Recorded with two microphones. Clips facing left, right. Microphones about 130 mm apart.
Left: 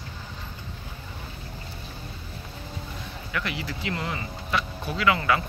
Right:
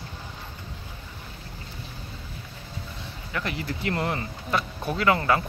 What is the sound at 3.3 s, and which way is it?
Speech, 35° right (ahead or behind).